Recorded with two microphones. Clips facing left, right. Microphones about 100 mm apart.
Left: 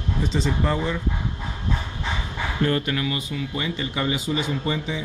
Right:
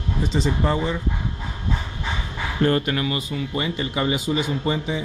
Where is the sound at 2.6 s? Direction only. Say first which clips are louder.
Right 3 dB; 35° right (ahead or behind).